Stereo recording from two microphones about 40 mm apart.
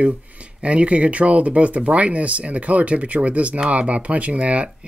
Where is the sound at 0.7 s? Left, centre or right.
Right.